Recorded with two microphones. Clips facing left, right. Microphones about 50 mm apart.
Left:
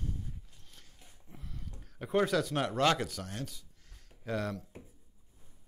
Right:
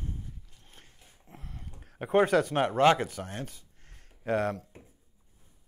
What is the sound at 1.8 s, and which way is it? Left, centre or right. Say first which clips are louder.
Speech: right 5 dB; right.